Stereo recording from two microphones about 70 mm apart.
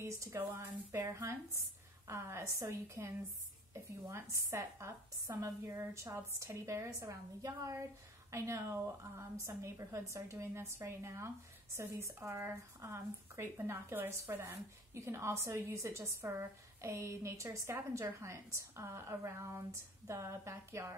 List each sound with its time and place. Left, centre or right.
0.0 s a woman's voice: right
1.0 s a woman's voice: right